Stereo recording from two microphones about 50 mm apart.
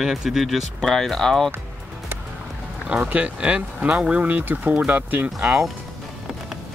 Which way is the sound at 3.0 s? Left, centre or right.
Right.